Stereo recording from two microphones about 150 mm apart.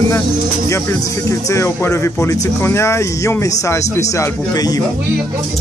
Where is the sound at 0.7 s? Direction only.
20° left (ahead or behind).